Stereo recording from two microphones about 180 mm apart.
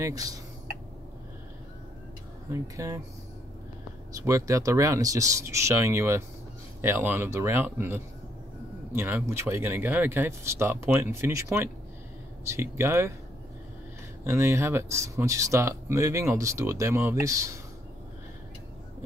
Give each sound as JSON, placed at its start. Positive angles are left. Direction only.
{"t": 0.0, "sound": "speech", "side_deg": -20}
{"t": 2.5, "sound": "speech", "side_deg": -15}
{"t": 4.2, "sound": "speech", "side_deg": -15}
{"t": 14.2, "sound": "speech", "side_deg": -15}